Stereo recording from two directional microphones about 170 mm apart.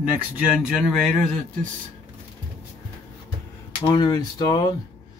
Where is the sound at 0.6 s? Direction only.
Centre (ahead or behind).